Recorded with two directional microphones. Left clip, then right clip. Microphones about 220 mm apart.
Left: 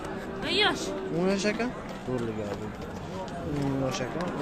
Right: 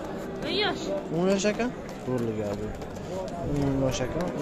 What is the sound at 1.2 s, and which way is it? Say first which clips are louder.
Speech: right 2 dB; 5° right (ahead or behind).